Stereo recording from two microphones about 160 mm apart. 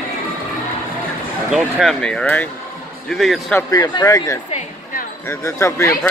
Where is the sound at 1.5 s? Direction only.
Centre (ahead or behind).